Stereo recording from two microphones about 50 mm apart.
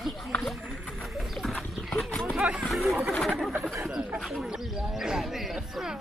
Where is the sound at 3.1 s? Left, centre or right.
Centre.